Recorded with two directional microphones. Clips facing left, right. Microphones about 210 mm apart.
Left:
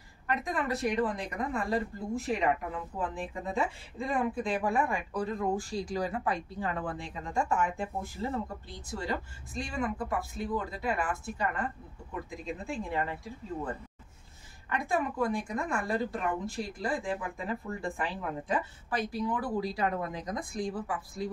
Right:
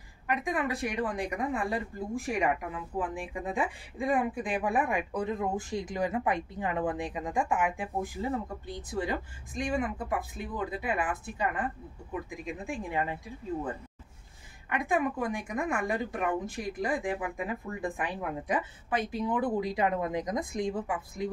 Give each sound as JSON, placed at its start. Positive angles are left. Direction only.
{"t": 0.3, "sound": "a woman's voice", "side_deg": -10}
{"t": 14.9, "sound": "a woman's voice", "side_deg": -15}